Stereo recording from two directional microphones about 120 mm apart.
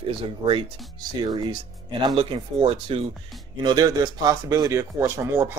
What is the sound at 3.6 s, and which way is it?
Speech, 35° right (ahead or behind).